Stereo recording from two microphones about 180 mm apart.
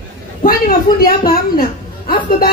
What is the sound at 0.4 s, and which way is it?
A woman's voice, 55° left (ahead or behind).